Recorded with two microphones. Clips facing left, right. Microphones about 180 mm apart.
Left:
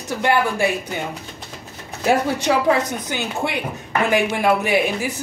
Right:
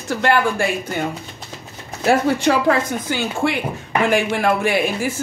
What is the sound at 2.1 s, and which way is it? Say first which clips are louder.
Speech: right 2 dB; 15° left (ahead or behind).